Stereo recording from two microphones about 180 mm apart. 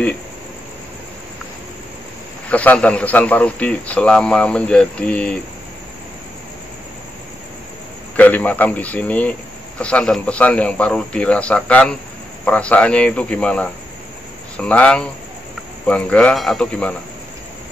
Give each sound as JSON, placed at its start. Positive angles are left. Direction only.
{"t": 2.5, "sound": "a man's voice", "side_deg": 10}
{"t": 8.2, "sound": "a man's voice", "side_deg": 10}